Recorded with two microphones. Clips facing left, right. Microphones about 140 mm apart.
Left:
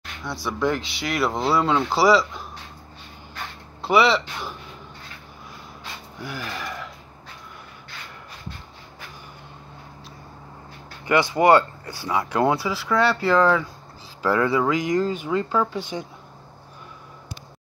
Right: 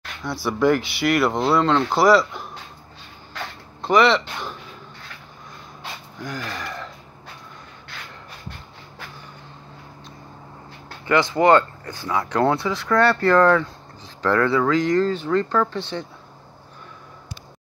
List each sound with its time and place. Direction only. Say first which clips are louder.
0.2 s speech: right 4 dB; centre (ahead or behind)
3.8 s speech: right 2 dB; 5° left (ahead or behind)
6.2 s speech: right 1 dB; 10° left (ahead or behind)
11.3 s speech: even; 15° left (ahead or behind)
12.5 s speech: right 2 dB; 5° left (ahead or behind)